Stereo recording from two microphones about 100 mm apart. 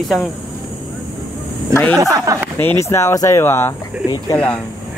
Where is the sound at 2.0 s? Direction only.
35° right (ahead or behind).